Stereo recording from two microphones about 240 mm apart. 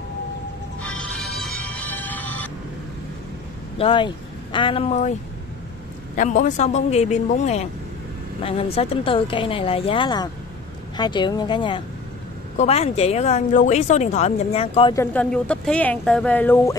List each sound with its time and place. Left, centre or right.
0.8 s music: centre
3.7 s speech: left
6.1 s speech: left
15.0 s speech: centre